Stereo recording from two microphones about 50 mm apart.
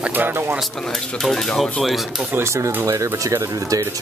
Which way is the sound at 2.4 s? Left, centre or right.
Right.